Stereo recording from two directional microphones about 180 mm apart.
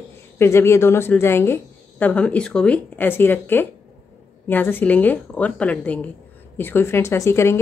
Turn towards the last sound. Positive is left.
turn(degrees=15)  # may be behind; listen again after turning